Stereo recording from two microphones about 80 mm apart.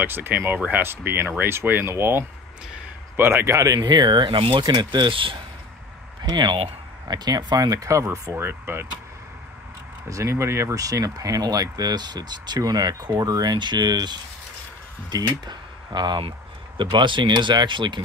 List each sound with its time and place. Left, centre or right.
0.0 s speech: right
3.5 s speech: right
3.8 s speech: right
6.2 s speech: right
7.1 s speech: right
10.0 s speech: right